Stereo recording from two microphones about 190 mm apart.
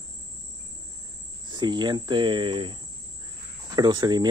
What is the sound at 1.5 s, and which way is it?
Speech, 25° right (ahead or behind).